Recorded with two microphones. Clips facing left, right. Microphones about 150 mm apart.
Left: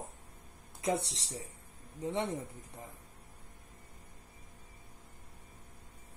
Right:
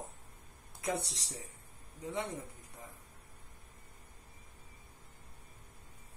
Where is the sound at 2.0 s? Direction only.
30° left (ahead or behind).